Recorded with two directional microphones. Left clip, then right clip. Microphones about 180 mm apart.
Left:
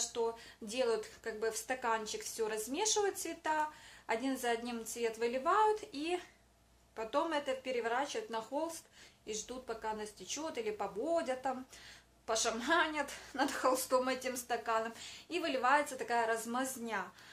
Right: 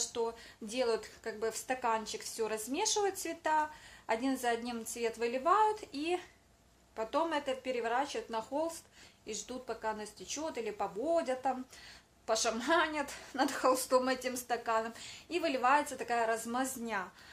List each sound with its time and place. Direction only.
0.0 s speech: 30° right (ahead or behind)